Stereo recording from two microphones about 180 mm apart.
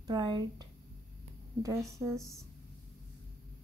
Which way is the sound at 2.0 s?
10° right (ahead or behind).